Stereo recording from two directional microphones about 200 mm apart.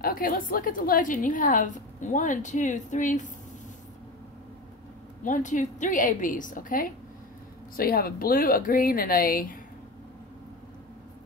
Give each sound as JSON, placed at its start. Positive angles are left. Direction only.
{"t": 0.0, "sound": "a woman's voice", "side_deg": 45}
{"t": 5.2, "sound": "a woman's voice", "side_deg": 40}